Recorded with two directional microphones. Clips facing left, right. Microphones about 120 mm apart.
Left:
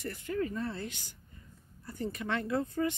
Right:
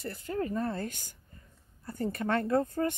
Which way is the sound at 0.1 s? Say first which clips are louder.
Right 2 dB; 40° right (ahead or behind).